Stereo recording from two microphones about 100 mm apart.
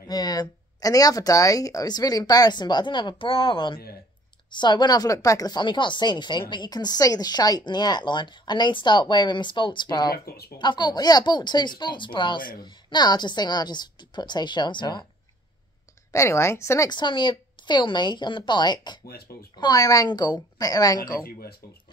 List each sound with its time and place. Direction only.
0.1 s speech: 40° left (ahead or behind)
5.6 s a woman's voice: 50° left (ahead or behind)
16.1 s a woman's voice: 30° left (ahead or behind)
16.9 s a woman's voice: 50° left (ahead or behind)